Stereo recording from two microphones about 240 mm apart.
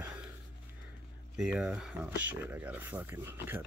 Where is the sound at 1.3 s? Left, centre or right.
Centre.